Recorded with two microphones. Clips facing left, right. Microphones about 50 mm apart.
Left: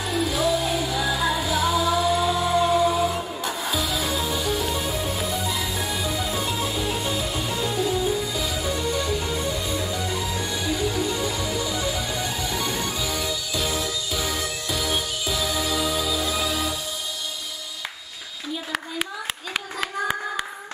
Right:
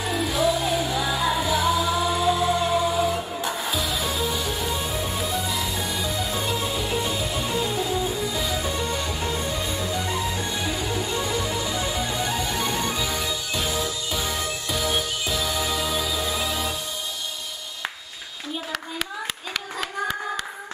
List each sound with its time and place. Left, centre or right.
0.0 s music: centre
3.3 s music: centre
3.7 s music: centre
6.4 s music: centre
8.7 s music: centre
9.9 s music: right
10.7 s music: centre
11.8 s music: right
14.1 s music: centre
16.3 s music: right
19.5 s clapping: centre